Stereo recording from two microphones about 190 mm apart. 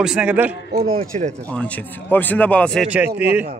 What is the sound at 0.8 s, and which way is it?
Speech, 35° right (ahead or behind).